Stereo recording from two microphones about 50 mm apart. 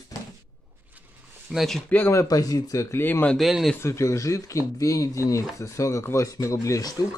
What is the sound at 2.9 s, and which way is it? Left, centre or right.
Speech, left.